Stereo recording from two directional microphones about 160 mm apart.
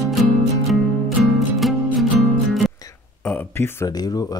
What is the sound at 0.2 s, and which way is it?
Music, centre (ahead or behind).